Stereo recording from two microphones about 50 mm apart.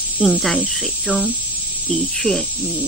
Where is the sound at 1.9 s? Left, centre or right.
Centre.